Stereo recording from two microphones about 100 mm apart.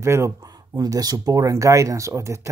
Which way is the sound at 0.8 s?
40° right (ahead or behind).